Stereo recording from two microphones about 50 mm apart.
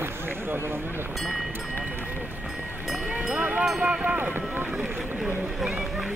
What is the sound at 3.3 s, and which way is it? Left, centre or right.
Vehicle, right.